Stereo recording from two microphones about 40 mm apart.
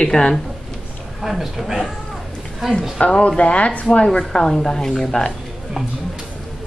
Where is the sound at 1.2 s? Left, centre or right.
Centre.